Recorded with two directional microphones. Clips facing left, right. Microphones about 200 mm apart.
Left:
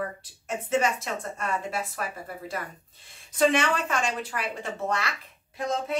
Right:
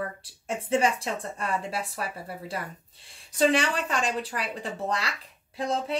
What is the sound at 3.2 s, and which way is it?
Speech, 35° right (ahead or behind).